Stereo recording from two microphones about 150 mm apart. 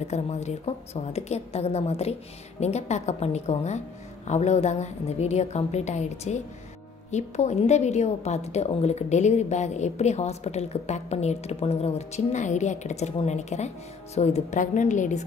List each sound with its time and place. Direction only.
0.1 s a woman's voice: 45° left (ahead or behind)